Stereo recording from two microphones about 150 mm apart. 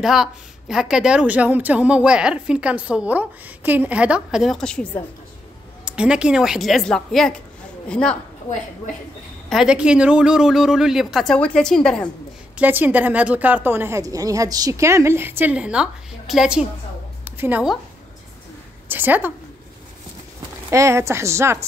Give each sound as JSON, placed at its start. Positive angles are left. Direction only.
{"t": 0.0, "sound": "a woman's voice", "side_deg": 0}
{"t": 5.9, "sound": "a woman's voice", "side_deg": -5}
{"t": 9.5, "sound": "speech", "side_deg": -5}
{"t": 12.5, "sound": "a woman's voice", "side_deg": -10}
{"t": 17.2, "sound": "a sound", "side_deg": -10}
{"t": 18.9, "sound": "a woman's voice", "side_deg": -15}
{"t": 20.7, "sound": "a woman's voice", "side_deg": -20}